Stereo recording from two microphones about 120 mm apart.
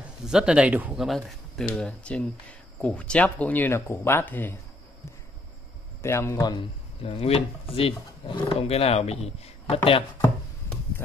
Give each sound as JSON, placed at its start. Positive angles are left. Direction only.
{"t": 0.0, "sound": "speech", "side_deg": -5}
{"t": 0.9, "sound": "speech", "side_deg": 0}
{"t": 6.0, "sound": "speech", "side_deg": 20}
{"t": 6.5, "sound": "speech", "side_deg": 55}